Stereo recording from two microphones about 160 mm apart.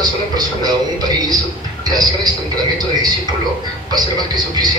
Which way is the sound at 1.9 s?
25° right (ahead or behind).